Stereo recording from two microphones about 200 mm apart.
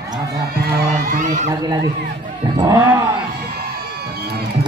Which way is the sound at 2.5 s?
20° right (ahead or behind).